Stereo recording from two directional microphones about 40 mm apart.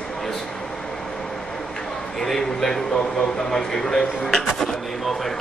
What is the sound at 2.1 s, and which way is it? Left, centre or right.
Speech, centre.